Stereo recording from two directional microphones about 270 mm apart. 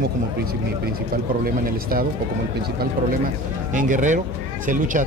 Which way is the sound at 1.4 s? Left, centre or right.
Right.